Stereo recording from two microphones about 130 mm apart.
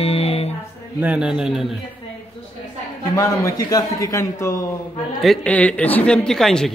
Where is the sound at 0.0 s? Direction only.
50° left (ahead or behind).